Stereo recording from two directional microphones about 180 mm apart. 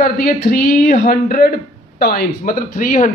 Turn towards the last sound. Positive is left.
turn(degrees=45)  # may be behind; listen again after turning